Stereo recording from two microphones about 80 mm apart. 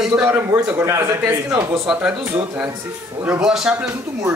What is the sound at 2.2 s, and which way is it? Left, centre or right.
Speech, right.